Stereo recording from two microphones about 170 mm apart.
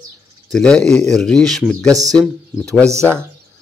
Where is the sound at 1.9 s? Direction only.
20° right (ahead or behind).